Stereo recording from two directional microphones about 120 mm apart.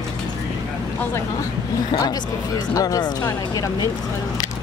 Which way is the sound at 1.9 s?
35° left (ahead or behind).